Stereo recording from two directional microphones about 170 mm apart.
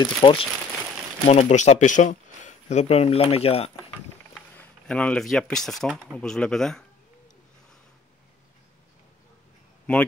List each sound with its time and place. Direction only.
0.0 s speech: 30° left (ahead or behind)
1.2 s speech: 40° left (ahead or behind)
4.6 s speech: 5° left (ahead or behind)